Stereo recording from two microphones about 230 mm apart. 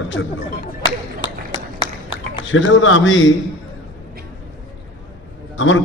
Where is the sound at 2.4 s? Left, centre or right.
Left.